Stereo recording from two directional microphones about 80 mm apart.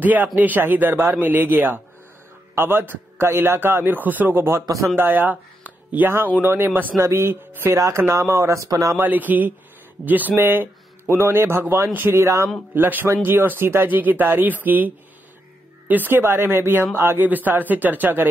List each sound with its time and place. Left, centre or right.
0.0 s speech: right
4.5 s speech: right
4.9 s speech: right
8.6 s speech: right
8.9 s speech: right
12.7 s speech: right
15.9 s speech: right